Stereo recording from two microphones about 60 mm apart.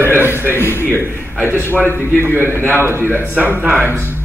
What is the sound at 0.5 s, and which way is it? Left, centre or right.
Speech, left.